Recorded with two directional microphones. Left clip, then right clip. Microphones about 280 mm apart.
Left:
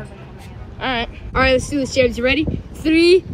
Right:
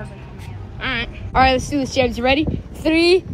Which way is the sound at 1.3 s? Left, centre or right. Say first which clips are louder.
Right 1 dB; centre.